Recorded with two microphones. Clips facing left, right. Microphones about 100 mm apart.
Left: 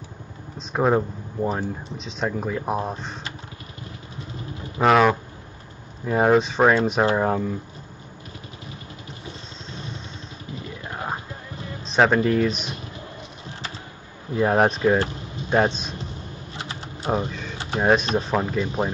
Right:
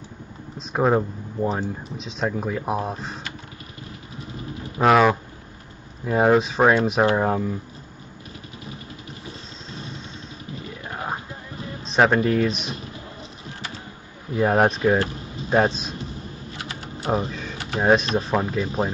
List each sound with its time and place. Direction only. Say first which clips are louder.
0.6 s speech: even; 5° right (ahead or behind)
4.8 s speech: even; centre (ahead or behind)
11.8 s speech: even; centre (ahead or behind)
14.3 s speech: even; centre (ahead or behind)
15.0 s speech: even; 30° left (ahead or behind)
15.5 s speech: right 1 dB; centre (ahead or behind)
16.5 s typing: left 1 dB; 25° left (ahead or behind)
17.3 s speech: even; centre (ahead or behind)